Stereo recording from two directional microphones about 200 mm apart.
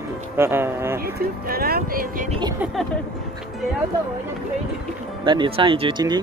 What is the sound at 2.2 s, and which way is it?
Speech, 25° right (ahead or behind).